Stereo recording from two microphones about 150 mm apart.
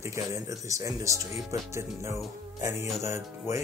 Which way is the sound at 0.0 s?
20° right (ahead or behind).